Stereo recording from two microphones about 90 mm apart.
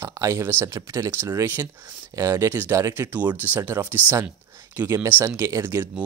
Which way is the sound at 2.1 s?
40° right (ahead or behind).